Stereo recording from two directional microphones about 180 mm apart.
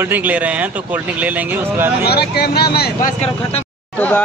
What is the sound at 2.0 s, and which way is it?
Speech, 60° left (ahead or behind).